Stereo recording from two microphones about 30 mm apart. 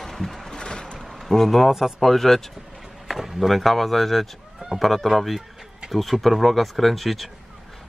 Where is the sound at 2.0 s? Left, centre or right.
Centre.